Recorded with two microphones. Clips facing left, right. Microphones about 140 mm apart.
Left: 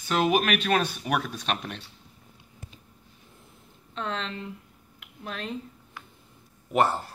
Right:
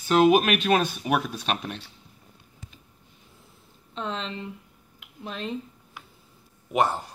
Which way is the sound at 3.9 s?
Centre (ahead or behind).